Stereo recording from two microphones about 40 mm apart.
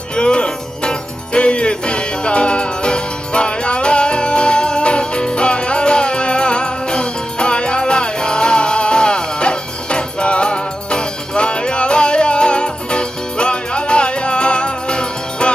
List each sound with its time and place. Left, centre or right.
0.1 s music: left